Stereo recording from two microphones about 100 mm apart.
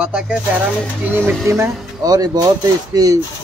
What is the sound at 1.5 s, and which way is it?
Speech, 30° right (ahead or behind).